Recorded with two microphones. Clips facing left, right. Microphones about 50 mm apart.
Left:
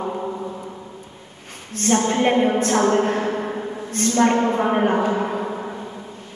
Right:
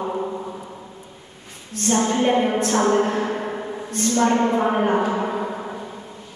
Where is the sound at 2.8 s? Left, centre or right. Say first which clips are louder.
Right 1 dB; centre.